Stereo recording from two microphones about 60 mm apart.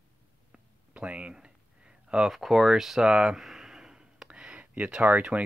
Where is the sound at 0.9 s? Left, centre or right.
Right.